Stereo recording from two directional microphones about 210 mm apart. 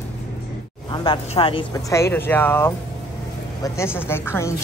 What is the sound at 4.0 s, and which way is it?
Speech, 10° left (ahead or behind).